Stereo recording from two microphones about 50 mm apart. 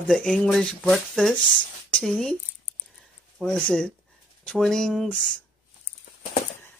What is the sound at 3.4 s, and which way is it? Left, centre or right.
Speech, centre.